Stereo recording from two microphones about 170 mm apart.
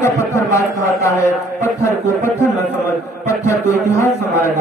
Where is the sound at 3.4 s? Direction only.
15° left (ahead or behind).